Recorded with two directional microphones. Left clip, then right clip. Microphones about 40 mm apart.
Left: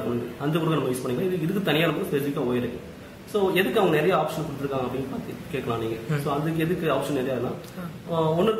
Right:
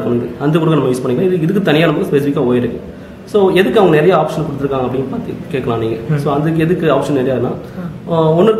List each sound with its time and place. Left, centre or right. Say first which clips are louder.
0.4 s a man's voice: right 11 dB; centre